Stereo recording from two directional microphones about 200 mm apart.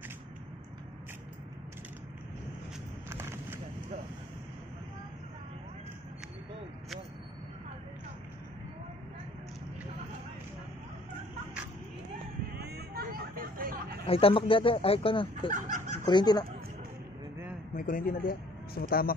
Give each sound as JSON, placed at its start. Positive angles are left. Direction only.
{"t": 3.1, "sound": "a sound", "side_deg": -10}
{"t": 12.5, "sound": "vehicle", "side_deg": -55}
{"t": 14.0, "sound": "speech", "side_deg": 30}
{"t": 17.7, "sound": "a man's voice", "side_deg": 45}